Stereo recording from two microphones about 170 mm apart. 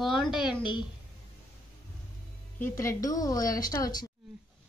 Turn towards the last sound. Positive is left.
turn(degrees=20)  # may be behind; listen again after turning